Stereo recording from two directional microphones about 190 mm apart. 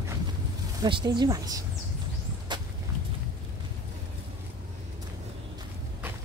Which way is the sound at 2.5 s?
25° right (ahead or behind).